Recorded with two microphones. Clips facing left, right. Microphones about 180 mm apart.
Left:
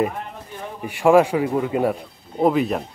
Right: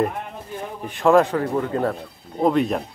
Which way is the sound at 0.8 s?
10° left (ahead or behind).